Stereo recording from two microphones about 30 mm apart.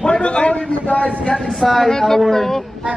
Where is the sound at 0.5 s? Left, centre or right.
Left.